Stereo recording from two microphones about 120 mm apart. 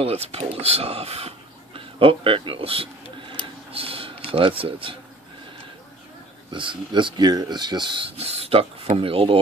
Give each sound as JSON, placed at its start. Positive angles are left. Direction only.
{"t": 0.0, "sound": "speech", "side_deg": -55}
{"t": 6.5, "sound": "speech", "side_deg": -45}
{"t": 8.2, "sound": "speech", "side_deg": -60}